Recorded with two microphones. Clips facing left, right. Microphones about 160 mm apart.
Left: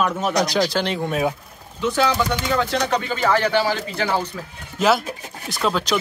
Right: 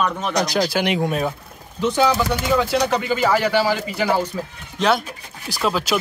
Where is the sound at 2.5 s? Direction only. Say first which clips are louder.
Right 3 dB; 10° right (ahead or behind).